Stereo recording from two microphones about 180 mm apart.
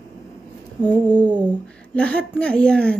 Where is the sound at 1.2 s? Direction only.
25° right (ahead or behind).